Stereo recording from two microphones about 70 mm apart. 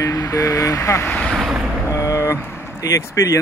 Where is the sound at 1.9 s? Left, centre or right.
Left.